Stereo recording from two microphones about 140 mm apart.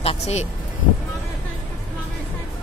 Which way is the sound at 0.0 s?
45° left (ahead or behind).